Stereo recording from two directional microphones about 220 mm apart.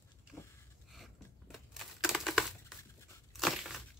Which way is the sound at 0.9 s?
Centre (ahead or behind).